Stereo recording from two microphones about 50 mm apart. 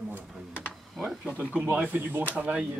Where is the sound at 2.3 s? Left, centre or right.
Right.